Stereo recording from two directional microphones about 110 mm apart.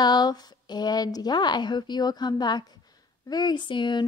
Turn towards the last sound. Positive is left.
turn(degrees=45)  # may be behind; listen again after turning